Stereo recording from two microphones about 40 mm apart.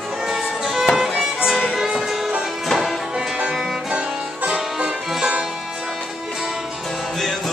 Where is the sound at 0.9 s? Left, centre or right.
Centre.